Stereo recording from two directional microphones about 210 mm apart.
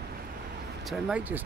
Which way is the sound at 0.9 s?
5° right (ahead or behind).